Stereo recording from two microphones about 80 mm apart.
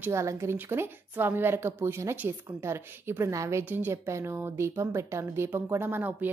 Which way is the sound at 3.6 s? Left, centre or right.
Right.